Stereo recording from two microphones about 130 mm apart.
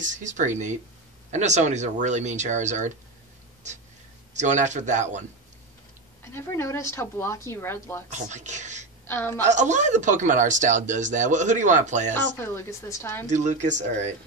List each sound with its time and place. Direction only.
0.0 s speech: 75° right (ahead or behind)
4.3 s speech: 65° right (ahead or behind)
6.3 s speech: 20° left (ahead or behind)
8.1 s speech: 65° right (ahead or behind)
9.0 s a woman's voice: 15° left (ahead or behind)
9.5 s speech: 65° right (ahead or behind)
12.1 s speech: 15° left (ahead or behind)
13.3 s speech: 65° right (ahead or behind)